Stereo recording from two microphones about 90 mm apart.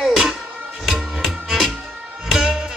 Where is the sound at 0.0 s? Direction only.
Centre (ahead or behind).